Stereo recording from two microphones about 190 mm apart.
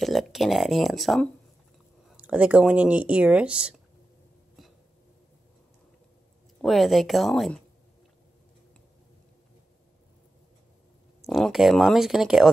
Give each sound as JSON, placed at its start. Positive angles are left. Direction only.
{"t": 0.0, "sound": "speech", "side_deg": 0}
{"t": 6.6, "sound": "speech", "side_deg": 0}
{"t": 11.2, "sound": "speech", "side_deg": 0}